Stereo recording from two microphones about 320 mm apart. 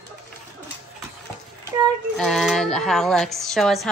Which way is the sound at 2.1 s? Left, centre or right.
Centre.